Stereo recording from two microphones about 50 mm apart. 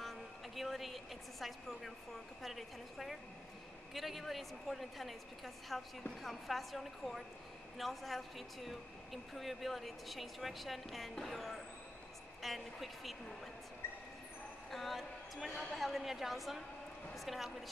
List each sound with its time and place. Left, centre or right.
0.0 s a woman's voice: centre
13.8 s train: left
14.7 s a woman's voice: centre